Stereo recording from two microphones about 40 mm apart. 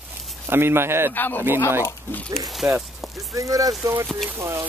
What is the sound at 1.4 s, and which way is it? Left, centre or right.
Speech, right.